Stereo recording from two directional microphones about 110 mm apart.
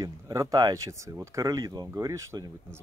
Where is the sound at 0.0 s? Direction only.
30° right (ahead or behind).